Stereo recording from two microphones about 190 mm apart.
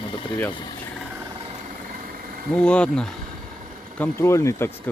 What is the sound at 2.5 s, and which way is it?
Speech, 5° left (ahead or behind).